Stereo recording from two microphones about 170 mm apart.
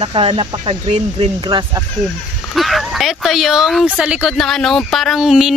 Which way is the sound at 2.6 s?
Centre (ahead or behind).